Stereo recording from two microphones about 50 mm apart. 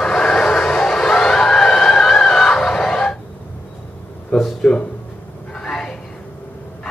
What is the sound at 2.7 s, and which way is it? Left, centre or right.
Fowl, centre.